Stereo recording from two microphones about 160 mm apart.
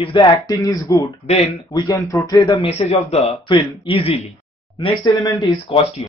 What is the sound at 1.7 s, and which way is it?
Speech, 25° left (ahead or behind).